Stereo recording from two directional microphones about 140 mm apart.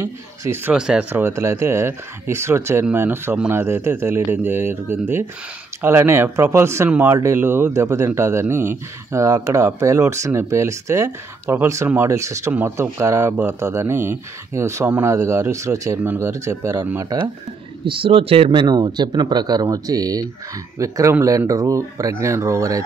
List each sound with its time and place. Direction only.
0.0 s speech: 20° right (ahead or behind)
0.7 s speech: 5° right (ahead or behind); by 17.3 s 25° right (ahead or behind)
17.8 s speech: 40° right (ahead or behind); by 22.8 s 20° right (ahead or behind)